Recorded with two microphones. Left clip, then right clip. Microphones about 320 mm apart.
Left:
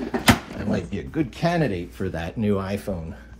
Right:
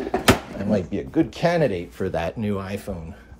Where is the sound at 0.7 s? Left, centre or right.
Right.